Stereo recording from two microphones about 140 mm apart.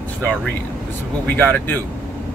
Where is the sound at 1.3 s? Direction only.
15° left (ahead or behind).